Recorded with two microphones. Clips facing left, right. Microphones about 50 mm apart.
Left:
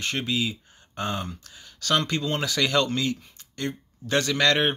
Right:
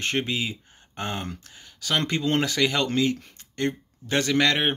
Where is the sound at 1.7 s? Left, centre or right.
Centre.